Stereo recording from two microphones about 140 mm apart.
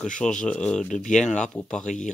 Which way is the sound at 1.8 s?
60° left (ahead or behind).